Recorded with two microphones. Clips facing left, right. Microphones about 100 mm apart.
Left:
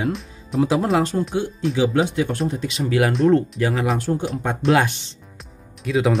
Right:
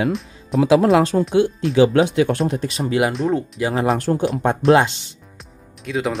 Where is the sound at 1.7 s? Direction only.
75° right (ahead or behind).